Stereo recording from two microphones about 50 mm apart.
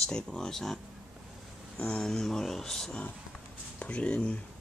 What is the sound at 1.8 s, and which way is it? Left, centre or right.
Speech, centre.